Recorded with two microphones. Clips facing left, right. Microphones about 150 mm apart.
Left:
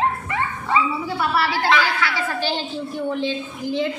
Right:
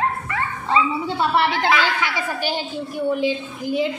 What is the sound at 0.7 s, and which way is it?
A woman's voice, 25° right (ahead or behind).